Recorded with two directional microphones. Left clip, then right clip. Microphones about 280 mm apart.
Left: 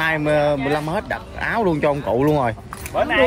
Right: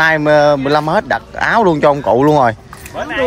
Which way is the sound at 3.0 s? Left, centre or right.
Left.